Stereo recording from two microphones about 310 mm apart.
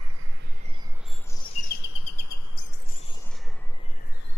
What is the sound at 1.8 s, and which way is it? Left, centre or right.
Bird, left.